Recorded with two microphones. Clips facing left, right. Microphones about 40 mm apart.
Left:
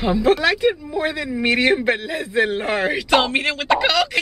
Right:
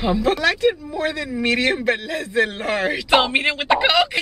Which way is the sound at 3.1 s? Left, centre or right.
Centre.